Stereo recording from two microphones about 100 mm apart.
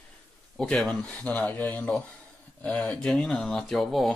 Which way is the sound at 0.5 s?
5° left (ahead or behind).